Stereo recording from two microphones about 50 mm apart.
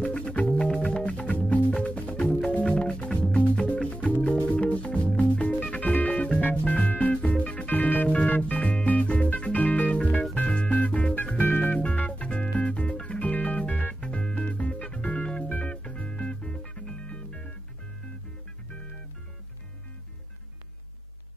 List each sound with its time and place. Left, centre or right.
0.0 s music: left
11.3 s music: left
11.7 s music: left